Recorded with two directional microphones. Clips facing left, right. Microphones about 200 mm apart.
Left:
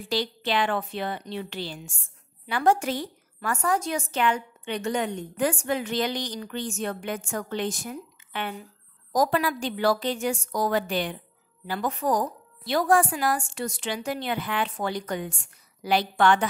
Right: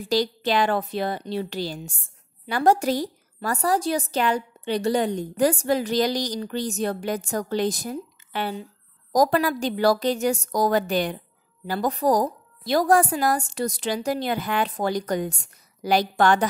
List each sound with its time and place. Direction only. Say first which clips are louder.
0.1 s a woman's voice: right 5 dB; 40° right (ahead or behind)